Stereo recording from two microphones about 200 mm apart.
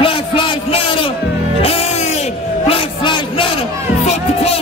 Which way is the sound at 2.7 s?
25° left (ahead or behind).